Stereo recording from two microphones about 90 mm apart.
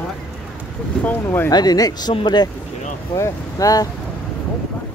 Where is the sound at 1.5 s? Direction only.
50° left (ahead or behind).